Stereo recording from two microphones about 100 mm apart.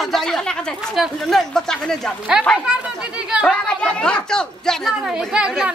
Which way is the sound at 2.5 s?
10° right (ahead or behind).